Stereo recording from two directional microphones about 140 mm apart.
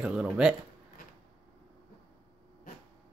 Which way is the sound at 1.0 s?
90° left.